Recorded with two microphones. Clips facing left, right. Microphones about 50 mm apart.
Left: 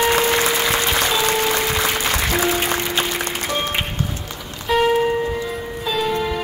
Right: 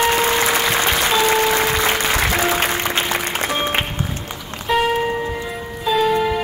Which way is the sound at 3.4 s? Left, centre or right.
Right.